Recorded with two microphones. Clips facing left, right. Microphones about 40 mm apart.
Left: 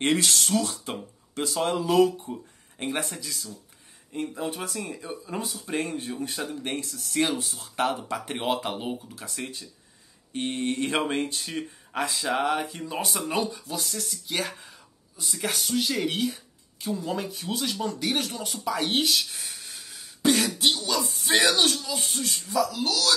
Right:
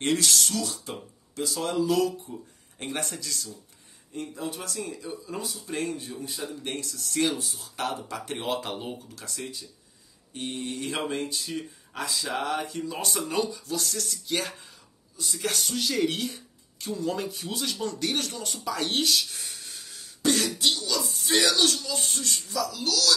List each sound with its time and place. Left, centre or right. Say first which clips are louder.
0.0 s speech: left 1 dB; left
2.8 s speech: left 3 dB; centre
4.1 s speech: left 3 dB; left
6.2 s speech: left 3 dB; left
6.6 s speech: left 2 dB; left
7.2 s speech: even; left
7.7 s speech: left 5 dB; left
9.4 s speech: left 2 dB; left
12.3 s speech: left 4 dB; centre
13.7 s speech: right 3 dB; centre
20.2 s throat clearing: left 2 dB; centre
20.5 s speech: left 2 dB; left; by 22.4 s centre
22.5 s speech: left 5 dB; left